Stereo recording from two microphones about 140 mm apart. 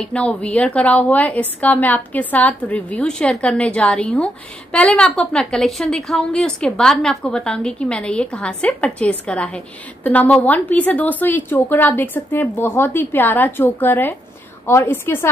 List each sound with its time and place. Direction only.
0.0 s a woman's voice: 5° left (ahead or behind)